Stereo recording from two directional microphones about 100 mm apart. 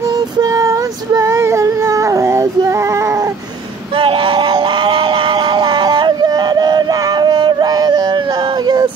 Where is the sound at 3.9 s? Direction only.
60° right (ahead or behind).